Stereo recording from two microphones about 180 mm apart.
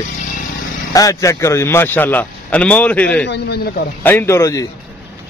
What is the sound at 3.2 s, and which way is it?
Speech, 65° left (ahead or behind).